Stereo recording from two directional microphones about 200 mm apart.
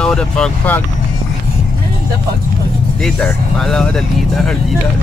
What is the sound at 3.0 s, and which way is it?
Speech, 5° left (ahead or behind).